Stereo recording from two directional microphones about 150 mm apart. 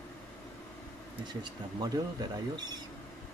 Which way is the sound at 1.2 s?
30° right (ahead or behind).